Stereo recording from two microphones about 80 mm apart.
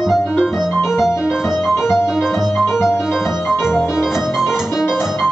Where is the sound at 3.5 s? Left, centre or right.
Left.